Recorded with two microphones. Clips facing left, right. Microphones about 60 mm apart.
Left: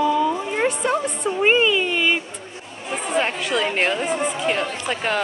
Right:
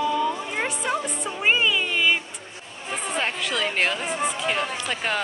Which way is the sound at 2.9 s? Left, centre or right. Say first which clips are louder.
Left 5 dB; centre.